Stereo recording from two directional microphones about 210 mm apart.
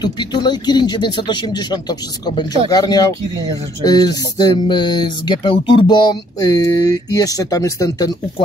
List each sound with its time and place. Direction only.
0.0 s speech: 20° left (ahead or behind)